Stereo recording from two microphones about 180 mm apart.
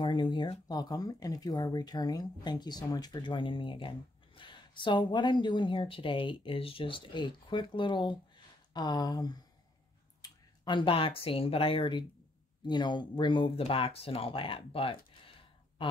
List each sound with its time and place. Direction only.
0.0 s speech: 25° left (ahead or behind)